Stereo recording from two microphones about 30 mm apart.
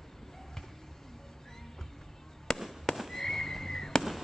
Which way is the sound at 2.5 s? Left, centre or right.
Centre.